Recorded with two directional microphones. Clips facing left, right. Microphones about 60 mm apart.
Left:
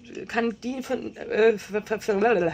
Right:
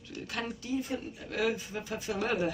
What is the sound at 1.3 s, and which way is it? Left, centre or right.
Speech, left.